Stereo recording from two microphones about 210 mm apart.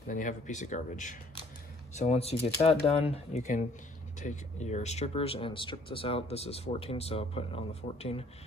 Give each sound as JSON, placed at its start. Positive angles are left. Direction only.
{"t": 0.1, "sound": "speech", "side_deg": 35}